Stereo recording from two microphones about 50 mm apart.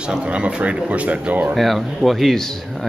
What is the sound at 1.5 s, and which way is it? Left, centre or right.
Speech, centre.